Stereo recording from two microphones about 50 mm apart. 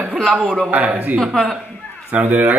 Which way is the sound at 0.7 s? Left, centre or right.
Right.